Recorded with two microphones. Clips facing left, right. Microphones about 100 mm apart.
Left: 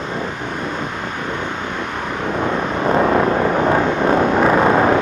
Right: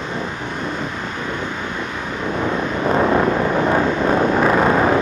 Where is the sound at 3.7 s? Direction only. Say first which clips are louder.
Left 1 dB; 30° left (ahead or behind).